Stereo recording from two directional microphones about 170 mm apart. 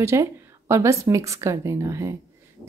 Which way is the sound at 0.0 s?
15° right (ahead or behind).